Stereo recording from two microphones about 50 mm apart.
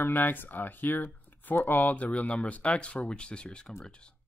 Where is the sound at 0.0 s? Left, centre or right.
Left.